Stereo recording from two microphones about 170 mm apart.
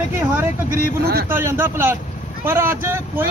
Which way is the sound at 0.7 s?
65° right (ahead or behind).